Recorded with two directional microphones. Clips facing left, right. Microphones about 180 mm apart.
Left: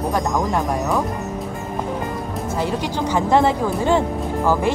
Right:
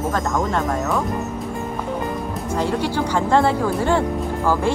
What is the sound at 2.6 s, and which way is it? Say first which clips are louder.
Speech: right 2 dB; 15° left (ahead or behind).